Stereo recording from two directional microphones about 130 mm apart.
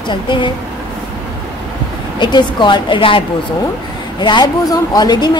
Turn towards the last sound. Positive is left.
turn(degrees=30)  # may be behind; listen again after turning